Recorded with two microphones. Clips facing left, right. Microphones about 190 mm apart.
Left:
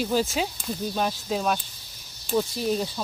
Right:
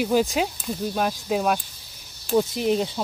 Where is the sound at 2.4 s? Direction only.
20° right (ahead or behind).